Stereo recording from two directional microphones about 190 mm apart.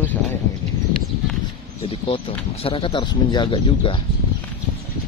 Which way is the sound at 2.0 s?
30° left (ahead or behind).